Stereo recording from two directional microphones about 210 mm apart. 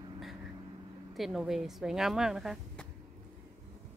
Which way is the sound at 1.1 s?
Centre (ahead or behind).